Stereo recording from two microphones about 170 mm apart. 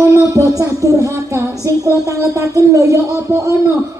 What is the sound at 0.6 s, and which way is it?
Speech, 20° right (ahead or behind).